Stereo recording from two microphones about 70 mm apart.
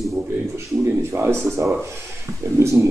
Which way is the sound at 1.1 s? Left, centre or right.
Right.